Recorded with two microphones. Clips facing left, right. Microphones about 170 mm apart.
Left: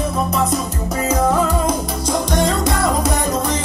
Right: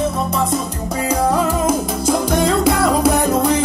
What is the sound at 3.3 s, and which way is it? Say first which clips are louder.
Music: right 5 dB; 15° right (ahead or behind).